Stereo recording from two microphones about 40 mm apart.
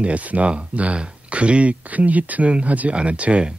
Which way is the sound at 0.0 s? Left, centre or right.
Right.